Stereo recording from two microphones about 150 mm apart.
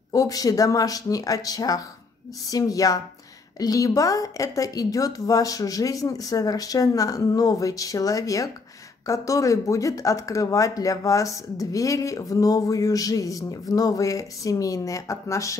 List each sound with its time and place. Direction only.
0.1 s speech: 25° left (ahead or behind)